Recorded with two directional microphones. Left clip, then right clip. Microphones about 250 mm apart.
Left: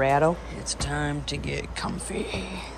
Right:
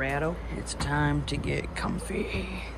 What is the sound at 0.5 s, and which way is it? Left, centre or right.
Speech, centre.